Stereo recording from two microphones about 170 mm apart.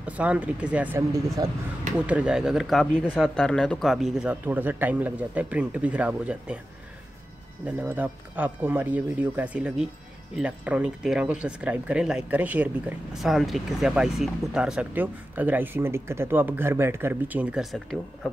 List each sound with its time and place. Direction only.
0.0 s speech: 10° right (ahead or behind)
1.1 s speech: 20° right (ahead or behind)
2.0 s speech: 5° right (ahead or behind)
7.6 s speech: 10° right (ahead or behind)